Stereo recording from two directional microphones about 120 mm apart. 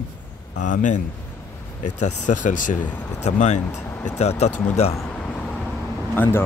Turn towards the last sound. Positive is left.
turn(degrees=15)  # may be behind; listen again after turning